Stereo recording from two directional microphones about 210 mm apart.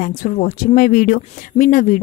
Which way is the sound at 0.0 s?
40° left (ahead or behind).